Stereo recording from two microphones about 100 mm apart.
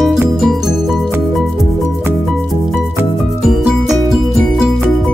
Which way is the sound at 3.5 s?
Centre (ahead or behind).